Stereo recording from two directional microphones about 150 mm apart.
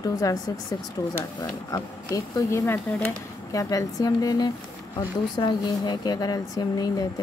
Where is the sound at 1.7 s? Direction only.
25° left (ahead or behind).